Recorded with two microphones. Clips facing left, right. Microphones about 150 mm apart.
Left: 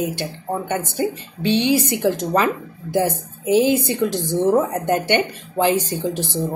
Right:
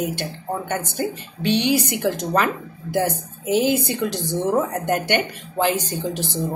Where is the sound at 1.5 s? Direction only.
25° left (ahead or behind).